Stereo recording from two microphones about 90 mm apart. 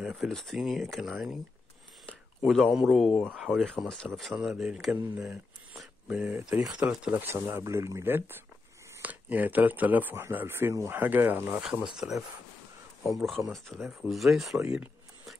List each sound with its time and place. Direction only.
0.0 s speech: 5° right (ahead or behind)
2.4 s speech: centre (ahead or behind)
4.3 s speech: 5° right (ahead or behind)
5.2 s a sound: 10° right (ahead or behind)
6.6 s speech: 10° right (ahead or behind)
7.2 s speech: 25° right (ahead or behind)
12.0 s speech: 5° right (ahead or behind)